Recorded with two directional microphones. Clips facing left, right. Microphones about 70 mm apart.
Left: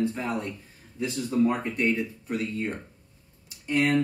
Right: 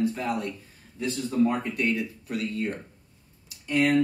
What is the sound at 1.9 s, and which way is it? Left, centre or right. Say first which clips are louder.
Speech: left 1 dB; left.